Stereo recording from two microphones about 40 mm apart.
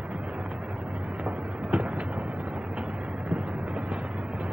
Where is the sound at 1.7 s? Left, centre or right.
Right.